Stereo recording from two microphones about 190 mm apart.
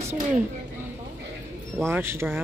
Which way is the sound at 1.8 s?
15° right (ahead or behind).